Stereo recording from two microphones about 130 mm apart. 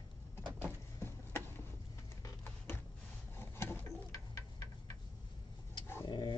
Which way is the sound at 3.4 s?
15° left (ahead or behind).